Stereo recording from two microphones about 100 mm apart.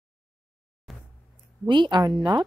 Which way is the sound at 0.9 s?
Centre (ahead or behind).